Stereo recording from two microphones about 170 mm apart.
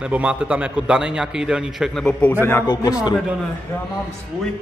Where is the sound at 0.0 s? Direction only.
5° right (ahead or behind).